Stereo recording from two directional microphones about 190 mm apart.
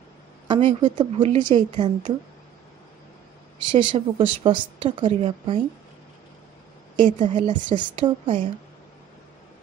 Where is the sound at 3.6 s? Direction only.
25° right (ahead or behind).